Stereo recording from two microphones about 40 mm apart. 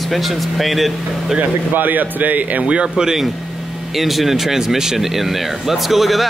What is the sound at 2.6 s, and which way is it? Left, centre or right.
Speech, right.